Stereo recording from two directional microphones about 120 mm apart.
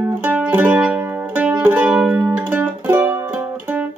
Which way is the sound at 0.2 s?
15° right (ahead or behind).